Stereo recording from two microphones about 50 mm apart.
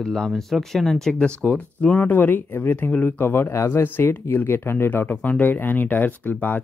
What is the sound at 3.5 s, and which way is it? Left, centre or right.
Speech, left.